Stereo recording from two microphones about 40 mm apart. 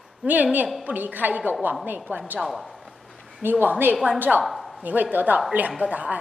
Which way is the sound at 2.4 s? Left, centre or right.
Centre.